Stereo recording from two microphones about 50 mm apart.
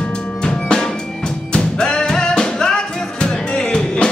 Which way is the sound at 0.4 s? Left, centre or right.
Centre.